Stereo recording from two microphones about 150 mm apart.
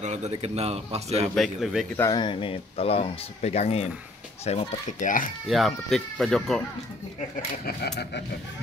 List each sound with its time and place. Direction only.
0.0 s a man's voice: 50° right (ahead or behind)
1.3 s speech: centre (ahead or behind)
2.0 s speech: 25° left (ahead or behind); by 5.1 s 45° left (ahead or behind)
5.5 s speech: centre (ahead or behind)